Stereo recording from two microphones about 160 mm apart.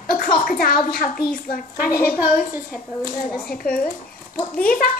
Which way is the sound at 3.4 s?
65° left (ahead or behind).